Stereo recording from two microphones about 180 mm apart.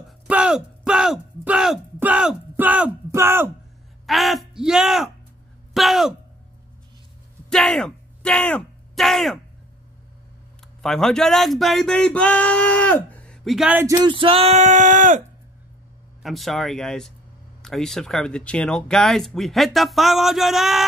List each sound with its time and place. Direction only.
0.3 s speech: 5° right (ahead or behind)
4.0 s speech: centre (ahead or behind)
7.4 s a sound: 5° left (ahead or behind)
10.8 s speech: 5° left (ahead or behind)
13.9 s speech: 25° right (ahead or behind); by 15.2 s 45° right (ahead or behind)
16.2 s speech: centre (ahead or behind)